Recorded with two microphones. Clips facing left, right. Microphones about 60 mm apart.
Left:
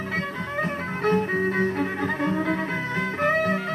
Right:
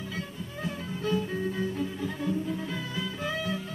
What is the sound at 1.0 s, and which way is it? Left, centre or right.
Music, left.